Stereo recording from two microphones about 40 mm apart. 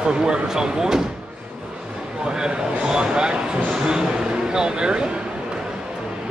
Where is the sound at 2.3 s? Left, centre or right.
Centre.